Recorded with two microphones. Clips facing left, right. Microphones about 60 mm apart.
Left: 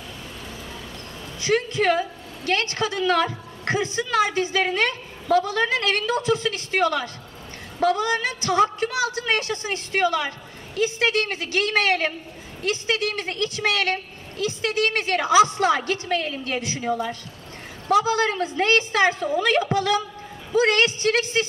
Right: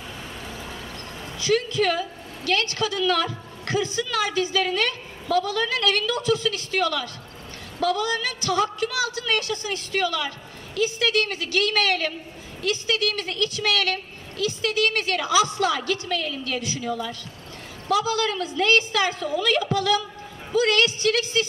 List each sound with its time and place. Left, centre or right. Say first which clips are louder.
1.4 s a woman's voice: left 1 dB; left